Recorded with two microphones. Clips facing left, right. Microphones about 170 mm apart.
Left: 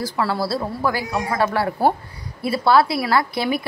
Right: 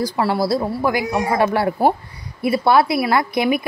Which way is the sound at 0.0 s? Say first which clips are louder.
Right 3 dB; 20° right (ahead or behind).